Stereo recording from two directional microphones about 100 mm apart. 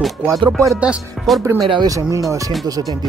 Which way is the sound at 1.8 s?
35° right (ahead or behind).